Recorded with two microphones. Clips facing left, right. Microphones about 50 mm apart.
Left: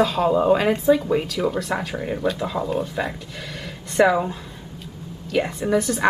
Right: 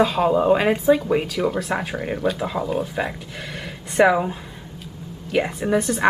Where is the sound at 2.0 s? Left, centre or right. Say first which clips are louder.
Even; right.